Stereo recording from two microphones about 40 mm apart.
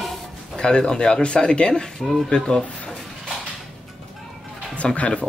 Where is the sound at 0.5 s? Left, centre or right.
Centre.